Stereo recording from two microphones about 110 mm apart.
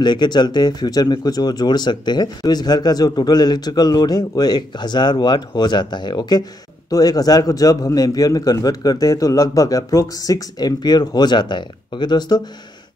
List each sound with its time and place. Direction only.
0.0 s speech: 40° left (ahead or behind)